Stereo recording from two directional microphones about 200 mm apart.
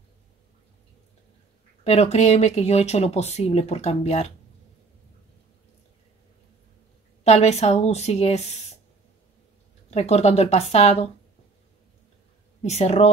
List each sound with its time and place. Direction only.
1.9 s speech: 30° left (ahead or behind)
7.2 s speech: 30° left (ahead or behind)
9.8 s speech: 30° left (ahead or behind)
12.6 s speech: 35° left (ahead or behind)